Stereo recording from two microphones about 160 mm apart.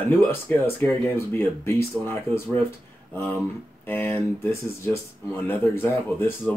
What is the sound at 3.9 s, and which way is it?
Speech, 15° left (ahead or behind).